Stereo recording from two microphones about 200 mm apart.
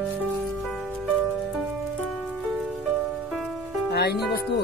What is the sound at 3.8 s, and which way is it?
Speech, 55° left (ahead or behind).